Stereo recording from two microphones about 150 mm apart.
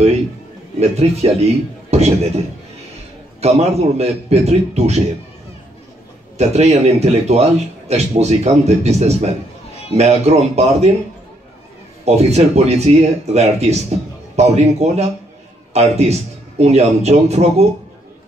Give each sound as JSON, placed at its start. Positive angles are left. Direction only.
{"t": 0.7, "sound": "a man's voice", "side_deg": -45}
{"t": 6.3, "sound": "a man's voice", "side_deg": -45}
{"t": 12.0, "sound": "a man's voice", "side_deg": -45}